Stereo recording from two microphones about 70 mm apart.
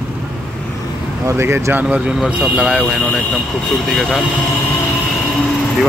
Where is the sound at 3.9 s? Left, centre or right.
Centre.